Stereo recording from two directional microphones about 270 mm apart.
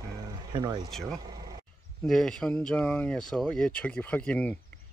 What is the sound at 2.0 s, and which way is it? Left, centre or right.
Speech, centre.